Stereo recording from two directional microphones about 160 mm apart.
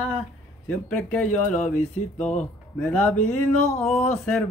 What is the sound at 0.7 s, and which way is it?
Speech, 10° left (ahead or behind).